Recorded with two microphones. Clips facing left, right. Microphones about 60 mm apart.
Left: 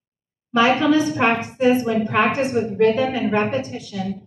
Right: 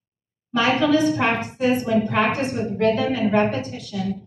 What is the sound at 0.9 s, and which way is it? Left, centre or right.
A woman's voice, left.